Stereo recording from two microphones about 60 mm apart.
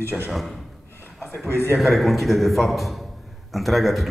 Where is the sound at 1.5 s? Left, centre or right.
Left.